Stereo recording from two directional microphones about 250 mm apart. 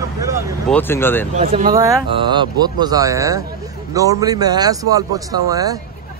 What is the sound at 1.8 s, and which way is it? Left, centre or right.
A man's voice, centre.